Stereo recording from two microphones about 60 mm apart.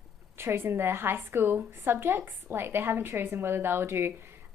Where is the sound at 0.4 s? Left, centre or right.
Right.